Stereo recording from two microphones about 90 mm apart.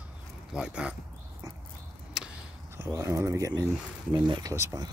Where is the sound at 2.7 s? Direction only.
30° right (ahead or behind).